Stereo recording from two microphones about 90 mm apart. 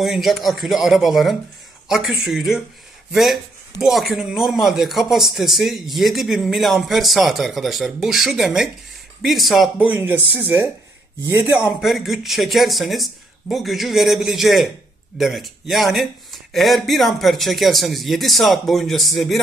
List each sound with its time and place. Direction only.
0.0 s a man's voice: centre (ahead or behind)
9.8 s speech: 20° right (ahead or behind)
11.8 s a man's voice: centre (ahead or behind)